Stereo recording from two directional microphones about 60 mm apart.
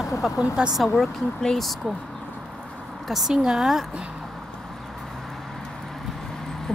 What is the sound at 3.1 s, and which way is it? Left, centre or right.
Speech, centre.